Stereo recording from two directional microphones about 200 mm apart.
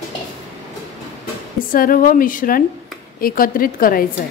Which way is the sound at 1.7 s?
45° left (ahead or behind).